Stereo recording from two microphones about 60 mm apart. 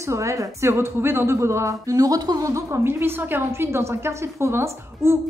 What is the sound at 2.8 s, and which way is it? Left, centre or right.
A woman's voice, right.